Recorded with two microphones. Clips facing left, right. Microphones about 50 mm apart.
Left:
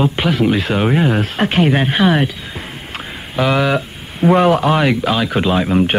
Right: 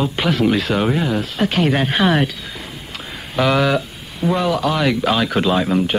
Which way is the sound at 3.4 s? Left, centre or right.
Centre.